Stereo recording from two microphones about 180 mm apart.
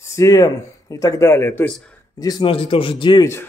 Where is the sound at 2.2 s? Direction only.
20° left (ahead or behind).